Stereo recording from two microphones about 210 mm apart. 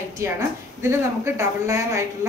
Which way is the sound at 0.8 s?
10° right (ahead or behind).